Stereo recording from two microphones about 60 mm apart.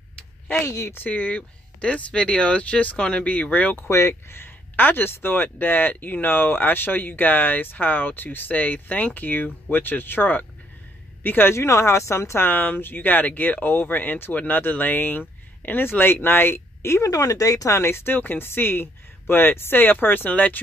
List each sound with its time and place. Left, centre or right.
0.7 s speech: left
0.9 s speech: left
3.9 s speech: left
11.5 s speech: left
12.4 s speech: left
17.1 s speech: left